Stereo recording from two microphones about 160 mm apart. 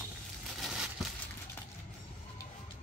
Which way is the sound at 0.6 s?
Centre (ahead or behind).